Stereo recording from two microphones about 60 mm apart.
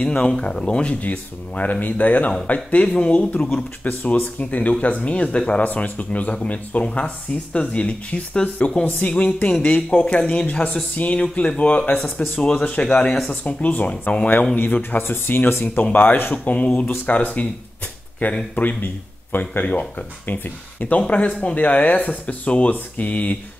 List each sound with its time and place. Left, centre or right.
0.0 s speech: centre
3.8 s speech: left
13.3 s speech: left
18.5 s speech: left